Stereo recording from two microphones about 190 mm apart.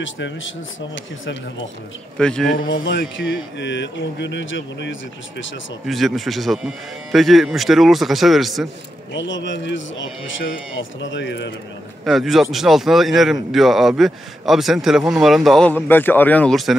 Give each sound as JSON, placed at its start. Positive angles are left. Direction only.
{"t": 0.0, "sound": "speech", "side_deg": 90}
{"t": 0.9, "sound": "speech", "side_deg": 75}
{"t": 2.1, "sound": "a man's voice", "side_deg": 5}
{"t": 2.8, "sound": "speech", "side_deg": 70}
{"t": 5.9, "sound": "a man's voice", "side_deg": 0}
{"t": 9.1, "sound": "speech", "side_deg": 70}
{"t": 12.0, "sound": "a man's voice", "side_deg": 0}